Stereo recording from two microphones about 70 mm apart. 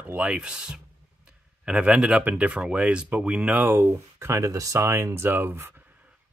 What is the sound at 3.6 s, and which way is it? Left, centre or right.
Speech, right.